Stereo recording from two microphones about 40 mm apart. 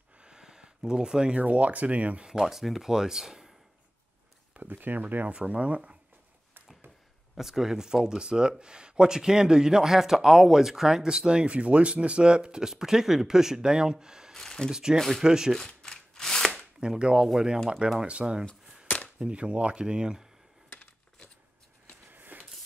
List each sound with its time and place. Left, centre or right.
0.2 s a sound: centre
1.3 s speech: right
2.4 s speech: centre
4.6 s speech: right
7.3 s speech: centre
14.3 s a sound: centre
14.7 s speech: centre
15.0 s speech: centre
15.2 s speech: centre
15.6 s a sound: centre
16.8 s speech: centre
22.1 s a sound: right